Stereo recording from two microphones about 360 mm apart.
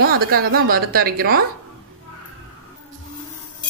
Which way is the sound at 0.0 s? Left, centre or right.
Right.